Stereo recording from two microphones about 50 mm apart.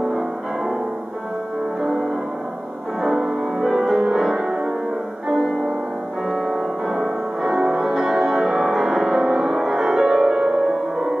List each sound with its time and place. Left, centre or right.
3.0 s music: centre
3.9 s music: centre
6.2 s music: centre